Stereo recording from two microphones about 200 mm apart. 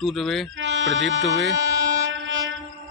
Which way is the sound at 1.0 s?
Centre (ahead or behind).